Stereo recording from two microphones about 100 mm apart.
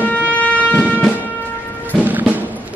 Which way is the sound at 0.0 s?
15° left (ahead or behind).